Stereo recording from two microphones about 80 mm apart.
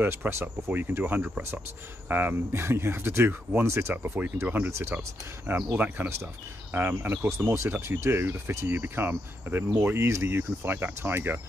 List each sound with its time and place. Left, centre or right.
0.0 s speech: right
4.6 s speech: right